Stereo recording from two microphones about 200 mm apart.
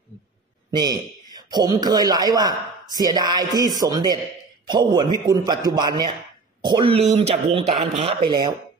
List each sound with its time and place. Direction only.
0.7 s a man's voice: 20° right (ahead or behind)